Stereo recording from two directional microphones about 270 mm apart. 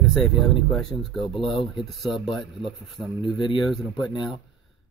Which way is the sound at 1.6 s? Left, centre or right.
Centre.